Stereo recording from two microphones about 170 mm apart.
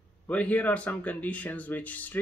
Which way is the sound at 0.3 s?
10° left (ahead or behind).